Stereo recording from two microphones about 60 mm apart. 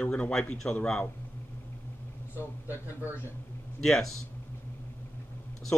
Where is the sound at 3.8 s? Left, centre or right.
Centre.